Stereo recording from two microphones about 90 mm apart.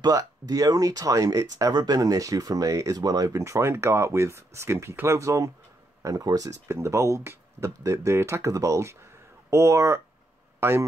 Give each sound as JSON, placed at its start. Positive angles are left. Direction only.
{"t": 0.0, "sound": "speech", "side_deg": -45}
{"t": 6.7, "sound": "a man's voice", "side_deg": -30}